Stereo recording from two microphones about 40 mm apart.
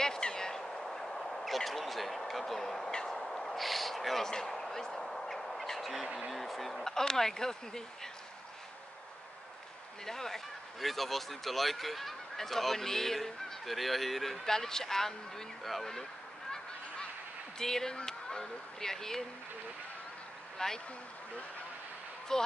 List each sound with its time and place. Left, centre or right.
0.0 s a sound: centre
2.9 s speech: centre
4.3 s bird: centre
6.3 s speech: centre
10.0 s speech: centre
17.6 s speech: centre
20.5 s speech: centre
22.3 s speech: centre